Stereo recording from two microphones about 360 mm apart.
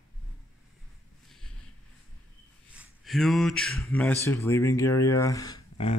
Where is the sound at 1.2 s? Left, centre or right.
Centre.